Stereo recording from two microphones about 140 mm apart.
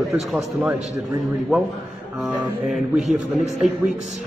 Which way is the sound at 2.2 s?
Centre (ahead or behind).